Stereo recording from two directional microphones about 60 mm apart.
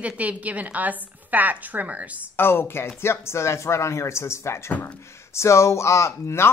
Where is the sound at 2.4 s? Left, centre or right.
Left.